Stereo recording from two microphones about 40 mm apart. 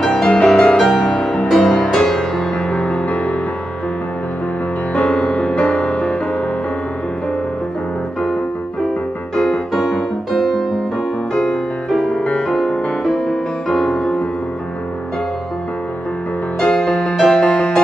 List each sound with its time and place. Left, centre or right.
0.1 s music: left
2.7 s music: left
3.1 s music: left
4.9 s music: left
9.3 s music: centre
11.9 s music: centre
12.3 s music: left; by 13.4 s centre
13.7 s music: centre
16.5 s music: centre
17.4 s music: centre